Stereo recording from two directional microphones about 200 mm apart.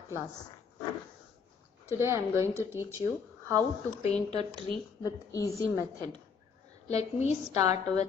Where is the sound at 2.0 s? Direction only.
15° right (ahead or behind).